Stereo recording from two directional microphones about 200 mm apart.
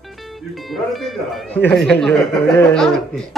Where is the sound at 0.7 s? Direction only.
Centre (ahead or behind).